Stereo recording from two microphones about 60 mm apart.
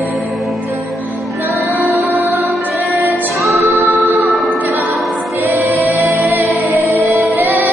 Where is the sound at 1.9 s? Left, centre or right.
Right.